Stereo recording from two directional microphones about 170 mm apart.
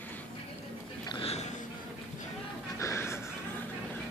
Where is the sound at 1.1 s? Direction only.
35° left (ahead or behind).